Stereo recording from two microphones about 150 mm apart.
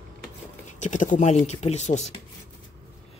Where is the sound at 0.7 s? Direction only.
55° left (ahead or behind).